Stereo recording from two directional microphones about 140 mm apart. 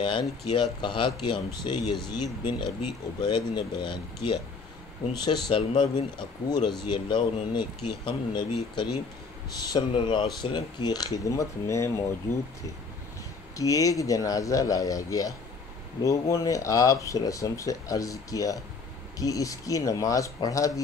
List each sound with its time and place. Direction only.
0.0 s speech: 35° left (ahead or behind)
3.2 s speech: 30° left (ahead or behind)
13.6 s speech: 25° left (ahead or behind)